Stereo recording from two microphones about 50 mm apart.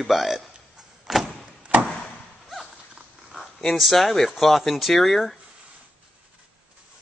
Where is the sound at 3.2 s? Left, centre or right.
Centre.